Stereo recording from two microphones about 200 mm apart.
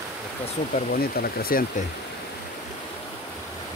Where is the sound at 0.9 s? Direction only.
50° left (ahead or behind).